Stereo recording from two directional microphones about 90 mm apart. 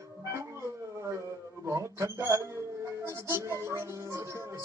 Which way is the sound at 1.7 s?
35° right (ahead or behind).